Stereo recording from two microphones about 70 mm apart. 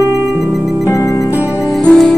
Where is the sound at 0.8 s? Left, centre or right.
Left.